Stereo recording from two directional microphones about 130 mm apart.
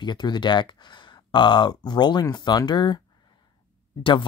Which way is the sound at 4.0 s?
40° left (ahead or behind).